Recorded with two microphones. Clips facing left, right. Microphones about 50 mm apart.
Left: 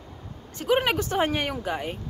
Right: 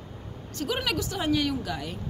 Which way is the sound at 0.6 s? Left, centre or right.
Left.